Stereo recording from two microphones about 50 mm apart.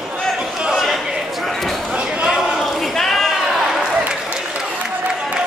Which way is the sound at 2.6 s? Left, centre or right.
Centre.